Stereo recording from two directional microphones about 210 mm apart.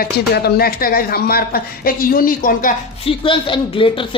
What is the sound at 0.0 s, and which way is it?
Speech, 45° left (ahead or behind).